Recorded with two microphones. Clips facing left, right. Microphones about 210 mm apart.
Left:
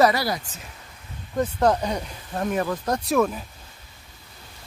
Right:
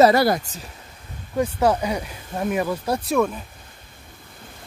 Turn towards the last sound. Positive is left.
turn(degrees=-10)  # may be behind; listen again after turning